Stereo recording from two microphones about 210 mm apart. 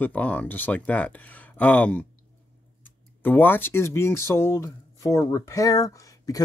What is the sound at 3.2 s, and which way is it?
Speech, 10° left (ahead or behind).